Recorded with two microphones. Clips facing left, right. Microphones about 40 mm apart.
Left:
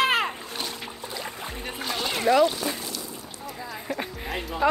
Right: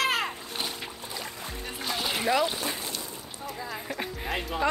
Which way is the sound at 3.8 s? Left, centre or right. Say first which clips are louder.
Left 3 dB; centre.